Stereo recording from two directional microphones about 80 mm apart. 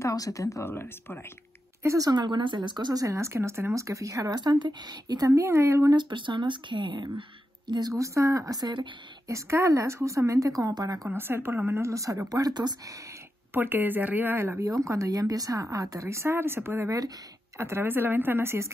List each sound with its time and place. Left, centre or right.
0.0 s speech: left
0.7 s speech: left
2.0 s speech: right
3.0 s a woman's voice: right
4.4 s speech: right
5.4 s a woman's voice: right
5.9 s speech: right
7.9 s speech: right
9.3 s a woman's voice: right
11.1 s a woman's voice: right
13.5 s a woman's voice: right
14.6 s a woman's voice: right